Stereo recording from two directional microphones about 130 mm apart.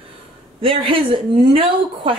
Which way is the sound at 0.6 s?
45° right (ahead or behind).